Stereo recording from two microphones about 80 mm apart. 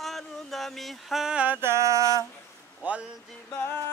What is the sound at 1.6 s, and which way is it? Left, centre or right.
Music, right.